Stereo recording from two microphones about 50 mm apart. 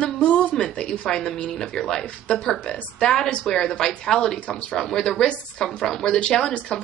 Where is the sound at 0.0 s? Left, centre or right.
Left.